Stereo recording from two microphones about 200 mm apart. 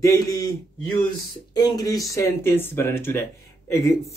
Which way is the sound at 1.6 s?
20° left (ahead or behind).